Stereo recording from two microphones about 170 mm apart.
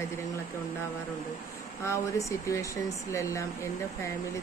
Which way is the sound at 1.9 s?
15° left (ahead or behind).